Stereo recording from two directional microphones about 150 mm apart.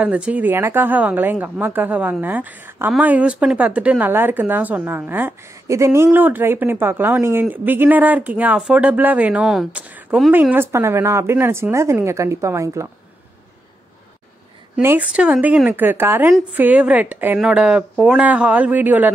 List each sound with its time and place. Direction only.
0.0 s a woman's voice: 10° right (ahead or behind)
14.8 s a woman's voice: 10° right (ahead or behind)